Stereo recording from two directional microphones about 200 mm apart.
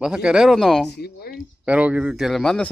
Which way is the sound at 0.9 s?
55° left (ahead or behind).